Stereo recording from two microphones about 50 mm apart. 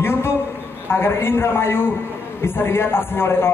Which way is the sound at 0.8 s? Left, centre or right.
Left.